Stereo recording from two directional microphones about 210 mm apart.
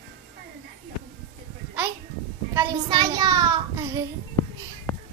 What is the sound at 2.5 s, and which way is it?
A child's voice, 15° right (ahead or behind).